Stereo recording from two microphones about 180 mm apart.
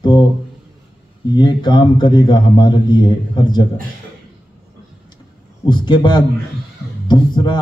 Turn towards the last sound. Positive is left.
turn(degrees=25)  # may be behind; listen again after turning